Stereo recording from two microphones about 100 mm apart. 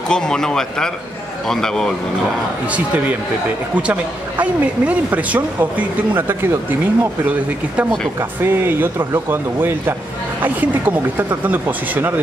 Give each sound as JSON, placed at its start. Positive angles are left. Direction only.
{"t": 0.1, "sound": "speech", "side_deg": 5}
{"t": 2.7, "sound": "speech", "side_deg": -15}